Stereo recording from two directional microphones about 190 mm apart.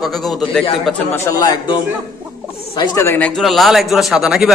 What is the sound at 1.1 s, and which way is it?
Speech, 15° left (ahead or behind).